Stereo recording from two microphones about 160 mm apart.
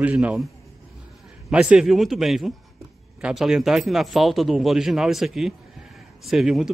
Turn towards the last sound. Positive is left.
turn(degrees=0)  # may be behind; listen again after turning